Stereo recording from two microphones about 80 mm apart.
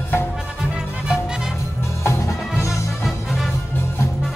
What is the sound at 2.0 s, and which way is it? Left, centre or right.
Music, left.